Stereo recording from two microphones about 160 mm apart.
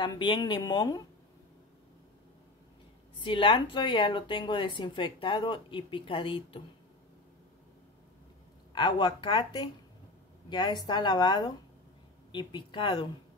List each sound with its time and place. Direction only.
0.0 s speech: 30° left (ahead or behind)
3.2 s speech: 30° left (ahead or behind)
8.7 s speech: 30° left (ahead or behind)